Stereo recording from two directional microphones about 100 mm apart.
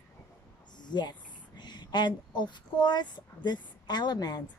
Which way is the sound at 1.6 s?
45° left (ahead or behind).